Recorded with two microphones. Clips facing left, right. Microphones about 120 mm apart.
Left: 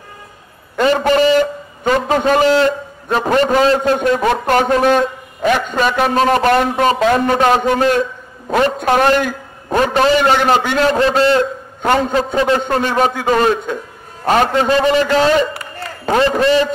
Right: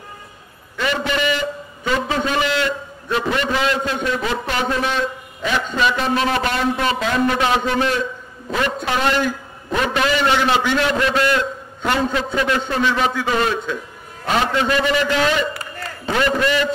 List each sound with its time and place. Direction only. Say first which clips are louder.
0.7 s a sound: left 9 dB; 45° left (ahead or behind)
1.9 s a man's voice: left 7 dB; 45° left (ahead or behind)
11.0 s a man's voice: left 6 dB; 30° left (ahead or behind)
11.8 s a man's voice: left 5 dB; 40° left (ahead or behind)
12.6 s a man's voice: left 4 dB; 45° left (ahead or behind)
14.7 s a man's voice: left 5 dB; 30° left (ahead or behind)